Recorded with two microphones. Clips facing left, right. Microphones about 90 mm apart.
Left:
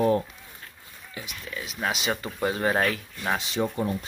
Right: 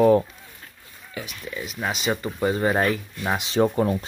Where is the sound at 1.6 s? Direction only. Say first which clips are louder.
Right 2 dB; centre (ahead or behind).